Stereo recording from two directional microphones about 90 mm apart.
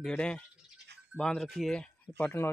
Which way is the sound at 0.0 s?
10° left (ahead or behind).